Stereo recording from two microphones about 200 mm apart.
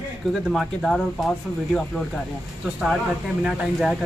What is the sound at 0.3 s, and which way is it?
Speech, centre (ahead or behind).